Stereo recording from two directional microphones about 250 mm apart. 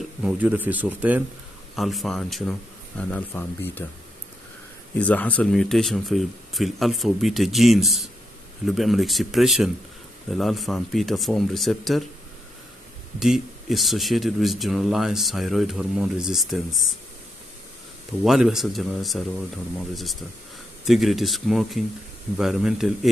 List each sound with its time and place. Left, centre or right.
0.2 s a man's voice: centre
4.9 s speech: centre
13.2 s speech: centre
18.2 s speech: centre
20.8 s speech: centre